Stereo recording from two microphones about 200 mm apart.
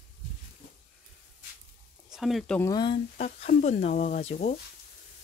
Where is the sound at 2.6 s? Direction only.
20° left (ahead or behind).